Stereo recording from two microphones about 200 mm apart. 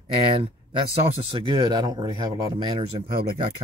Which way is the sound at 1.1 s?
20° right (ahead or behind).